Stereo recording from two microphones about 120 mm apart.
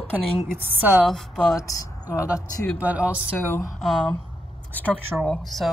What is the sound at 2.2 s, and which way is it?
Speech, 10° right (ahead or behind).